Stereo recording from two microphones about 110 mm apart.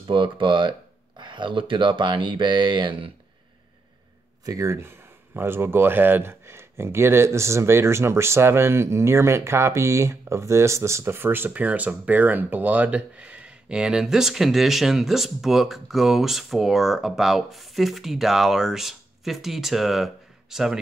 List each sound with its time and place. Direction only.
0.1 s speech: 50° right (ahead or behind)
4.5 s speech: 30° right (ahead or behind); by 20.8 s 5° right (ahead or behind)